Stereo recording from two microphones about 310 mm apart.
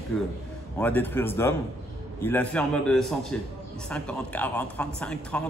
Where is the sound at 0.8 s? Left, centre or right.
Centre.